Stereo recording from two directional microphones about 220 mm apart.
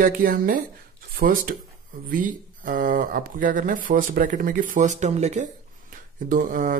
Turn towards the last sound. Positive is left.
turn(degrees=-35)  # may be behind; listen again after turning